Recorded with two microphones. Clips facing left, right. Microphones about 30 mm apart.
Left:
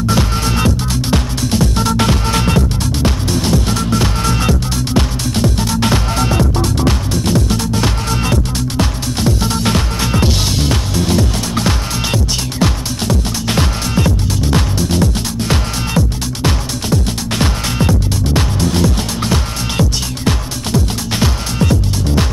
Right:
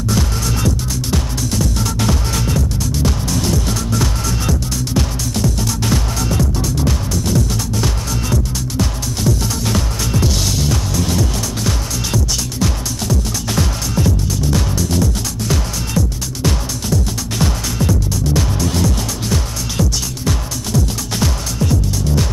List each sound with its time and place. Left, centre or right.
0.1 s music: left
21.5 s music: left